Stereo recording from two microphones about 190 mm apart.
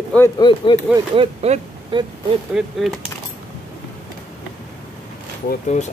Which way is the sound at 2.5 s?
Centre (ahead or behind).